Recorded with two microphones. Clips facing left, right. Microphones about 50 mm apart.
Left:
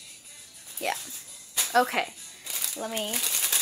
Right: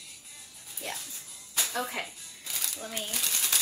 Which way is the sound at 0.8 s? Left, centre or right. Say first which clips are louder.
Left 8 dB; left.